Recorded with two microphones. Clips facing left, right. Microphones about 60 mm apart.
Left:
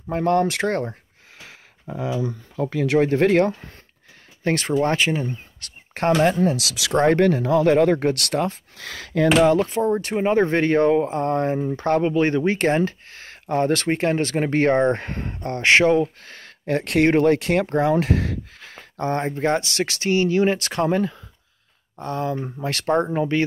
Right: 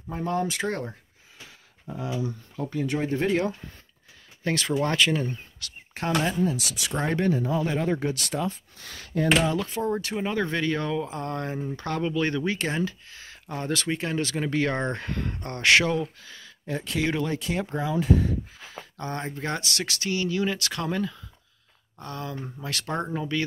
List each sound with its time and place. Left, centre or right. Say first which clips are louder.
0.1 s speech: left 8 dB; left
1.4 s a sound: left 4 dB; left
2.6 s speech: left 8 dB; left
4.4 s speech: left 5 dB; left
4.8 s speech: left 3 dB; left
5.6 s a sound: left 11 dB; left
6.2 s speech: left 7 dB; left
7.0 s speech: left 8 dB; left
9.5 s speech: left 8 dB; left
12.5 s speech: left 8 dB; left
16.2 s speech: left 4 dB; left
18.6 s speech: left 8 dB; left